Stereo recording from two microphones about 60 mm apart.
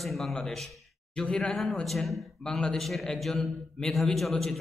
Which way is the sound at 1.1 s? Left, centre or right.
Centre.